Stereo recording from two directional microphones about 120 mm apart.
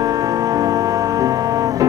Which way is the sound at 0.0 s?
30° right (ahead or behind).